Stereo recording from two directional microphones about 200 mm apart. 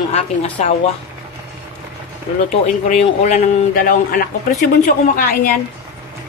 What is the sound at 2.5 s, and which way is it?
A woman's voice, 30° left (ahead or behind).